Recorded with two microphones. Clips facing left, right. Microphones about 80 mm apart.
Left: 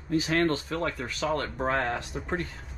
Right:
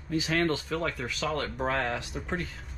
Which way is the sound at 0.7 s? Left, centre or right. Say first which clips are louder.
Left 1 dB; centre.